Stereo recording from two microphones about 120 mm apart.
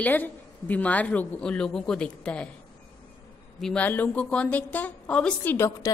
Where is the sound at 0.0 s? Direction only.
15° left (ahead or behind).